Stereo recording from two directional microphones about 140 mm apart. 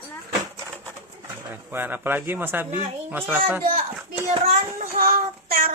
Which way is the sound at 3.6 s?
60° right (ahead or behind).